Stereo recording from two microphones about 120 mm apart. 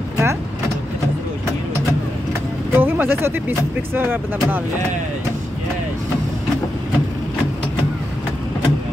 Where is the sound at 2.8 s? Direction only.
15° right (ahead or behind).